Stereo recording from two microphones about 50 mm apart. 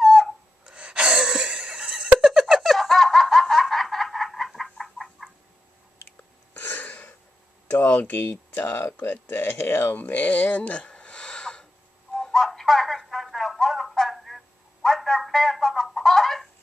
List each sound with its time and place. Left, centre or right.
0.0 s a sound: centre
0.7 s gasp: centre
2.1 s a sound: centre
6.6 s throat clearing: left
7.7 s speech: left
12.2 s music: centre